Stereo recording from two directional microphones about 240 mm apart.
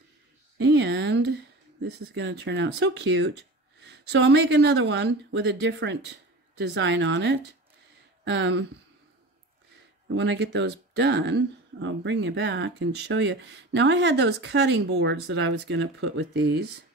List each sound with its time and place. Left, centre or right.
0.6 s a sound: right
2.0 s speech: right
10.1 s speech: right